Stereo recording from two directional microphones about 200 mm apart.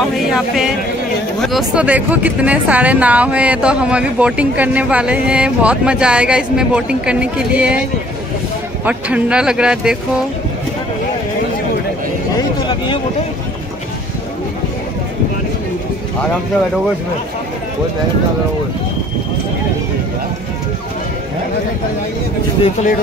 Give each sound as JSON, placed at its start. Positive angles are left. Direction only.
{"t": 0.3, "sound": "a woman's voice", "side_deg": -5}
{"t": 8.8, "sound": "a woman's voice", "side_deg": -5}
{"t": 12.6, "sound": "a sound", "side_deg": 25}